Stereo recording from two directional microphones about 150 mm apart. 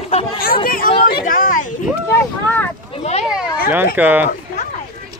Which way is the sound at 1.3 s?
60° left (ahead or behind).